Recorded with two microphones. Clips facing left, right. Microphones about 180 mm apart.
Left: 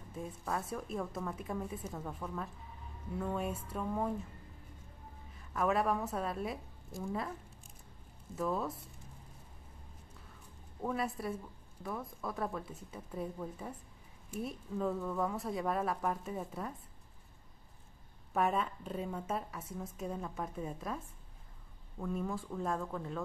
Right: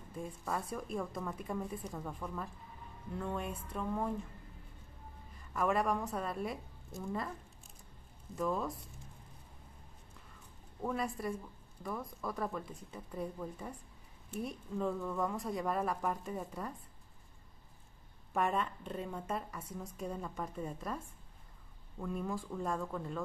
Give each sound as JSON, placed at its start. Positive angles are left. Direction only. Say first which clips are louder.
{"t": 0.1, "sound": "a woman's voice", "louder": "even", "side_deg": 0}
{"t": 3.2, "sound": "a sound", "louder": "left 2 dB", "side_deg": 5}
{"t": 5.5, "sound": "a woman's voice", "louder": "left 1 dB", "side_deg": 0}
{"t": 8.4, "sound": "a woman's voice", "louder": "even", "side_deg": 5}
{"t": 10.8, "sound": "a woman's voice", "louder": "even", "side_deg": 5}
{"t": 18.3, "sound": "a woman's voice", "louder": "left 1 dB", "side_deg": 5}
{"t": 22.0, "sound": "a woman's voice", "louder": "left 1 dB", "side_deg": 0}